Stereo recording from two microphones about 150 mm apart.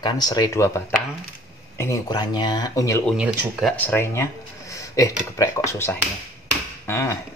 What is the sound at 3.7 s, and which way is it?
Speech, 10° left (ahead or behind).